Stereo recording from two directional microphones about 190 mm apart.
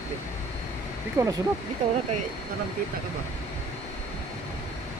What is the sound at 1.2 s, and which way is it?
Speech, 15° right (ahead or behind).